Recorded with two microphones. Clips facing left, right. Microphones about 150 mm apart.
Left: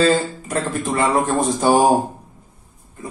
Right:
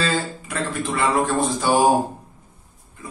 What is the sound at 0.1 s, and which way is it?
A man's voice, 45° left (ahead or behind).